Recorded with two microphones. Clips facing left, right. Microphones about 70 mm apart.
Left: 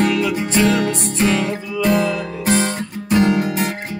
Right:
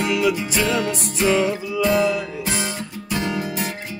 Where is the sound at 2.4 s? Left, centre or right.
Left.